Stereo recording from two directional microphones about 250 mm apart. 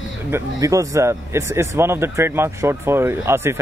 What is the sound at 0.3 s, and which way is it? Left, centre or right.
Speech, centre.